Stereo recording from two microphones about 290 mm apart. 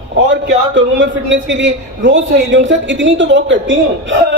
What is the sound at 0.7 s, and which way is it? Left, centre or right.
A man's voice, right.